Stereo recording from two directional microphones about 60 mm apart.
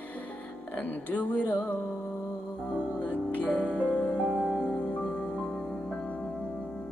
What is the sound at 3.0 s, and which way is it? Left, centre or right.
Music, left.